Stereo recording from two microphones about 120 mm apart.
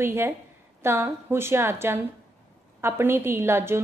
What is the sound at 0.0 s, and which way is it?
A woman's voice, 20° right (ahead or behind).